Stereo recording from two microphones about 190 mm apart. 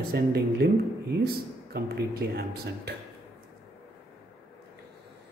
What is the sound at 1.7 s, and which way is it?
Speech, 55° right (ahead or behind).